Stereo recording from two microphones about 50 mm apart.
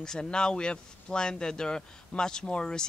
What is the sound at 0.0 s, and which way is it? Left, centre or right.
Speech, centre.